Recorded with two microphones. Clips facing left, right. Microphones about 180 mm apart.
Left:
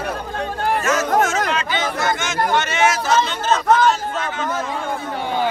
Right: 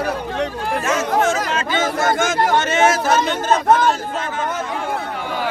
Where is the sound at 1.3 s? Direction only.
45° right (ahead or behind).